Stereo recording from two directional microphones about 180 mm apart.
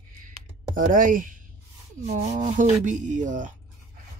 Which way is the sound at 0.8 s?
50° right (ahead or behind).